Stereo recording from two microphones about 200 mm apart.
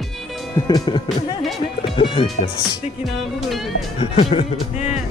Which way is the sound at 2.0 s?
25° left (ahead or behind).